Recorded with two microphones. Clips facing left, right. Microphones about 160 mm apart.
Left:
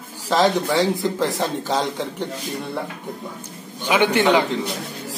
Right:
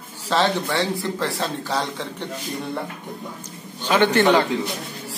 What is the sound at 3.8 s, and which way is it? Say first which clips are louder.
Speech: even; 10° left (ahead or behind).